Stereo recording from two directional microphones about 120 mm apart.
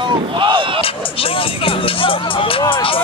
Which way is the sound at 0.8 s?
50° left (ahead or behind).